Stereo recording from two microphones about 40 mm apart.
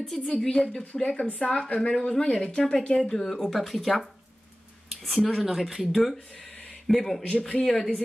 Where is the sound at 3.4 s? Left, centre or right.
Centre.